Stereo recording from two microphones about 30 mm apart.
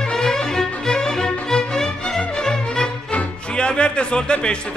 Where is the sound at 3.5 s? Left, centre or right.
Left.